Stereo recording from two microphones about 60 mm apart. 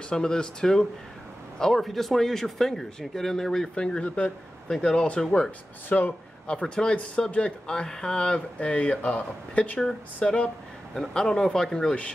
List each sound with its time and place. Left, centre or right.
0.1 s speech: centre
5.9 s speech: left
6.4 s speech: centre